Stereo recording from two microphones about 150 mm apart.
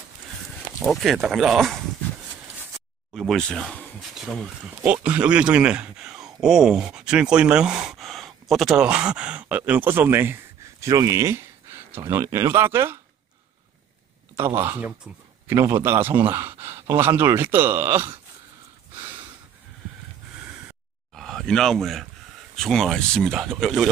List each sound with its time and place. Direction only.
0.6 s speech: 5° right (ahead or behind)
3.2 s speech: 5° left (ahead or behind); by 13.0 s 15° right (ahead or behind)
14.3 s speech: 15° right (ahead or behind)
15.1 s speech: 5° right (ahead or behind)
15.4 s speech: 20° right (ahead or behind)
21.1 s a sound: centre (ahead or behind)
22.6 s speech: 5° left (ahead or behind)